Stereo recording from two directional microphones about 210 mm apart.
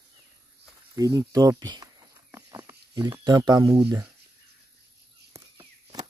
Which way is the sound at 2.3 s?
15° right (ahead or behind).